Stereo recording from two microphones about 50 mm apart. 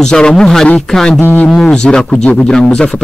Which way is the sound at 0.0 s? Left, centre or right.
Centre.